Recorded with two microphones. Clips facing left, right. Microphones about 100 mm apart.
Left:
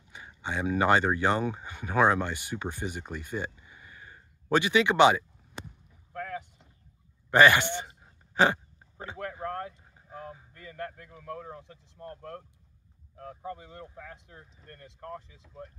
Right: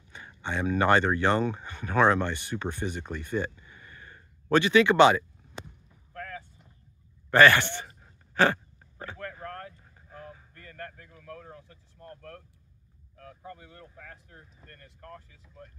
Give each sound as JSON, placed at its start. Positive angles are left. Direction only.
{"t": 0.1, "sound": "speech", "side_deg": 10}
{"t": 6.4, "sound": "vehicle", "side_deg": 20}
{"t": 7.2, "sound": "a sound", "side_deg": 15}
{"t": 11.1, "sound": "speech", "side_deg": 20}